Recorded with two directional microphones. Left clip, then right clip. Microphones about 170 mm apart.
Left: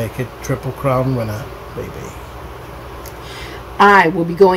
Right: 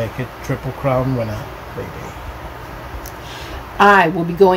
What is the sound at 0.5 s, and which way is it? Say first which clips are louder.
Speech: left 2 dB; 25° left (ahead or behind).